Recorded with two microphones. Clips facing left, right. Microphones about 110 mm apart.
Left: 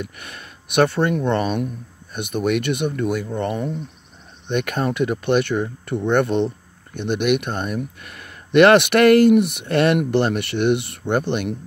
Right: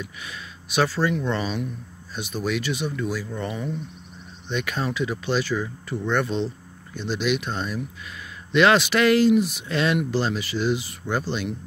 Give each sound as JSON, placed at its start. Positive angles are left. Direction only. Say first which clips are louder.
{"t": 0.0, "sound": "speech", "louder": "left 3 dB", "side_deg": 55}